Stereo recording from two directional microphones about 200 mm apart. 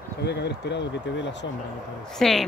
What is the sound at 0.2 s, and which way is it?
Speech, 55° left (ahead or behind).